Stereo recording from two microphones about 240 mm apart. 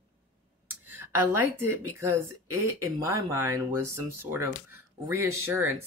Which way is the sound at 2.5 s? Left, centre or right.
Right.